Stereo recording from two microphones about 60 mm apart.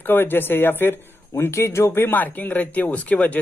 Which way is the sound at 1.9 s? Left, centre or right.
Left.